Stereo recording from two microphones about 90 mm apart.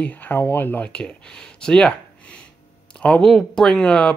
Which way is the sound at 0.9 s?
10° left (ahead or behind).